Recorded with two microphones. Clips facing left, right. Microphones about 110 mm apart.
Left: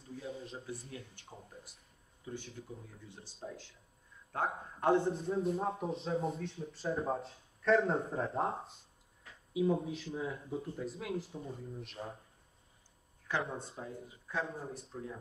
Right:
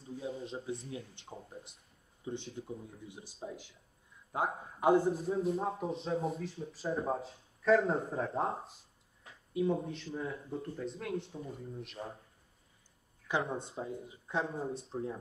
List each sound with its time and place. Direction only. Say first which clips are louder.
0.1 s speech: right 4 dB; 20° right (ahead or behind)
3.1 s a man's voice: right 1 dB; 15° right (ahead or behind)
13.4 s speech: right 3 dB; 25° right (ahead or behind)